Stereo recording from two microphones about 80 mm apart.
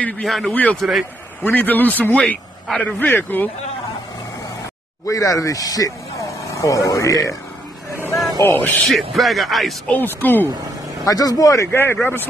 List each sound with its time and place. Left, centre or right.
0.2 s speech: centre
0.5 s a man's voice: centre
0.7 s speech: centre
1.4 s a man's voice: left
5.0 s speech: left
8.1 s vehicle: centre
8.4 s a man's voice: left
8.8 s speech: centre
9.8 s a man's voice: left
11.1 s speech: left
11.7 s a man's voice: left